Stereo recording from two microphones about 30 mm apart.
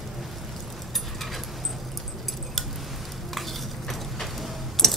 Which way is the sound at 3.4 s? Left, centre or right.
Centre.